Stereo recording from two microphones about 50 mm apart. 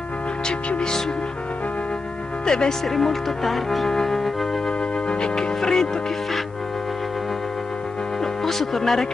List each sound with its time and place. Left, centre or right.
0.5 s speech: centre
2.4 s speech: centre
5.0 s speech: centre
8.2 s music: centre